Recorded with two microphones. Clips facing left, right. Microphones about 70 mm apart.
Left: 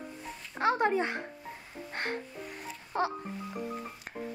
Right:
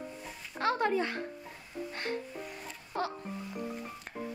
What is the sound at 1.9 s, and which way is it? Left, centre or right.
Music, left.